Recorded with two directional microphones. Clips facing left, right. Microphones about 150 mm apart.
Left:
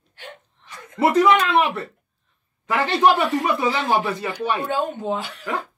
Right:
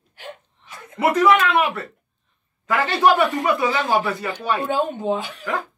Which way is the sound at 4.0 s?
20° left (ahead or behind).